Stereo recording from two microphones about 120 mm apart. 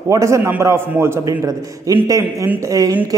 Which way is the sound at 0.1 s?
25° right (ahead or behind).